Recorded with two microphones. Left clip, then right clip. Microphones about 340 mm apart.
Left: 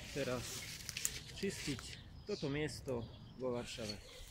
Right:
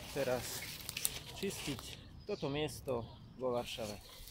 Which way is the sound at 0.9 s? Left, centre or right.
Centre.